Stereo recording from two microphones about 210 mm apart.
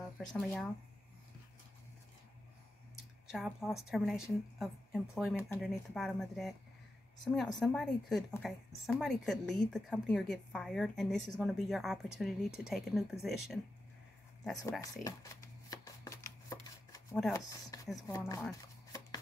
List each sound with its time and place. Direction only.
0.2 s a woman's voice: centre (ahead or behind)
3.3 s a woman's voice: centre (ahead or behind)
14.6 s speech: 15° left (ahead or behind)
15.7 s shuffling cards: 15° left (ahead or behind)
17.3 s speech: 15° left (ahead or behind)